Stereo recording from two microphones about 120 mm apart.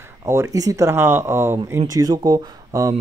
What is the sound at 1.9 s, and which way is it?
Speech, 30° right (ahead or behind).